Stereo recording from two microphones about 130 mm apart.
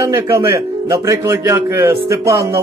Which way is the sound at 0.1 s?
15° right (ahead or behind).